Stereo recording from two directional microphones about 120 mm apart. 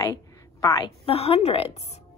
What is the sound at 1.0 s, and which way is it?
Speech, 55° left (ahead or behind).